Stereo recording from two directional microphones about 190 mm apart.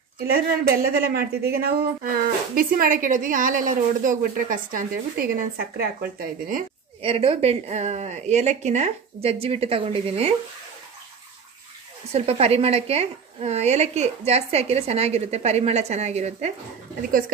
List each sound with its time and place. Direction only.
0.3 s a woman's voice: 55° right (ahead or behind)
7.0 s a woman's voice: 30° right (ahead or behind)
12.1 s a woman's voice: 35° right (ahead or behind)